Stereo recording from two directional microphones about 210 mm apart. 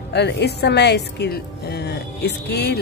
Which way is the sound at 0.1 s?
55° left (ahead or behind).